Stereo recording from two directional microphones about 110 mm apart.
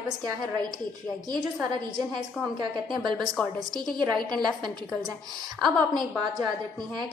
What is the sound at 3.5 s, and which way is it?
A woman's voice, 5° left (ahead or behind).